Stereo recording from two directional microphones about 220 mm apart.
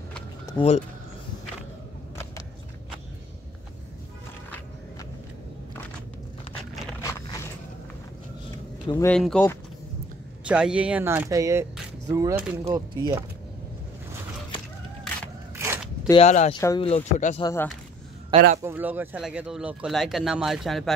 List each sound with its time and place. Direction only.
0.6 s speech: 25° left (ahead or behind)
7.0 s biting: 15° left (ahead or behind)
8.8 s speech: 10° left (ahead or behind)
10.4 s speech: 5° right (ahead or behind)
12.6 s speech: 20° right (ahead or behind)
15.6 s zipper: 5° right (ahead or behind)
16.1 s speech: 30° left (ahead or behind)
16.5 s speech: 20° left (ahead or behind)
18.3 s a man's voice: 35° right (ahead or behind)
18.6 s speech: 10° right (ahead or behind)